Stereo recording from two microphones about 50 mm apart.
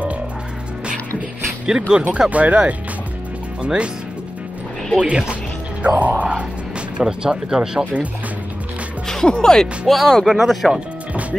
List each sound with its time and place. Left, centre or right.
1.7 s speech: right
5.0 s music: right
7.0 s speech: centre
9.0 s music: centre
9.3 s speech: centre
9.8 s speech: centre